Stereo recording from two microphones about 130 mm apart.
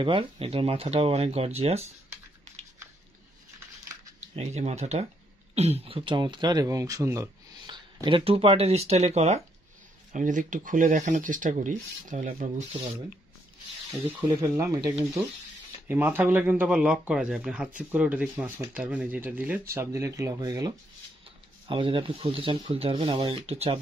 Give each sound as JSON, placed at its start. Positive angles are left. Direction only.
{"t": 0.0, "sound": "speech", "side_deg": -40}
{"t": 2.5, "sound": "a sound", "side_deg": -60}
{"t": 3.5, "sound": "scissors", "side_deg": -25}
{"t": 4.4, "sound": "speech", "side_deg": -55}
{"t": 7.7, "sound": "speech", "side_deg": -40}
{"t": 10.1, "sound": "speech", "side_deg": -80}
{"t": 14.6, "sound": "speech", "side_deg": -25}
{"t": 15.9, "sound": "speech", "side_deg": -15}
{"t": 21.6, "sound": "speech", "side_deg": -40}